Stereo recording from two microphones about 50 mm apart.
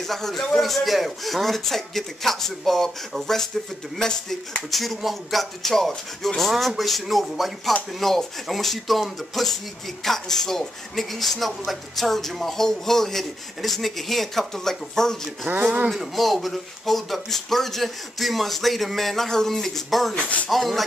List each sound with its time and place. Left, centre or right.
0.0 s speech: centre
15.4 s speech: right
15.9 s speech: centre